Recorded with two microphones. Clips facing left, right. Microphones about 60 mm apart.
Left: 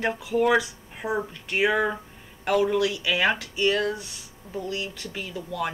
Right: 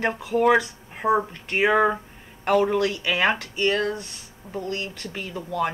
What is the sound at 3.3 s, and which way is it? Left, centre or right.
Speech, right.